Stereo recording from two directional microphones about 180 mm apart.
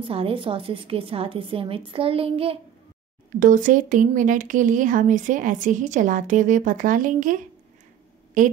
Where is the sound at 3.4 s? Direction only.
45° right (ahead or behind).